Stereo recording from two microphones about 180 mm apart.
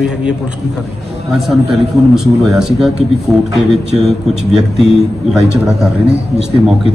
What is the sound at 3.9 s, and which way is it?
Speech, centre (ahead or behind).